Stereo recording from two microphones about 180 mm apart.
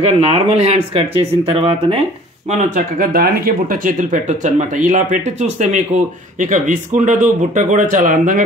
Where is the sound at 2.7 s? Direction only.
50° right (ahead or behind).